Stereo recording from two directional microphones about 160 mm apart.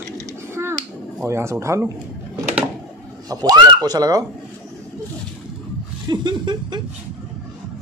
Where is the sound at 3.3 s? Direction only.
25° right (ahead or behind).